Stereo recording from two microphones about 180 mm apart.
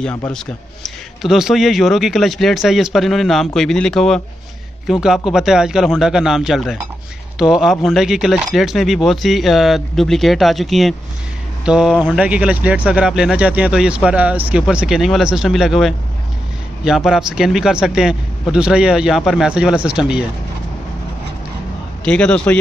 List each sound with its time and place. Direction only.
0.0 s a man's voice: 5° left (ahead or behind)
22.0 s speech: 5° left (ahead or behind)